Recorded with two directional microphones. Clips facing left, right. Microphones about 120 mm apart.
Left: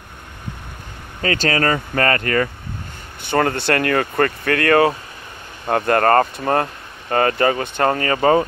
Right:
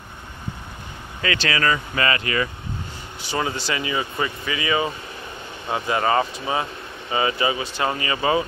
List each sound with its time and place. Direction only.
1.2 s speech: 40° left (ahead or behind)